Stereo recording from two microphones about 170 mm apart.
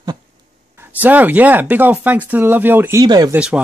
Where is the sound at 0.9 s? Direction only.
10° right (ahead or behind).